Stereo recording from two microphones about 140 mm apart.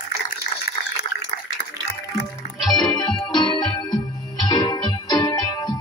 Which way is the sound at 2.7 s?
25° left (ahead or behind).